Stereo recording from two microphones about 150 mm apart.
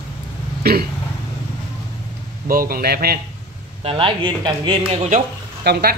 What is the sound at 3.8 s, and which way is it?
Speech, 35° right (ahead or behind).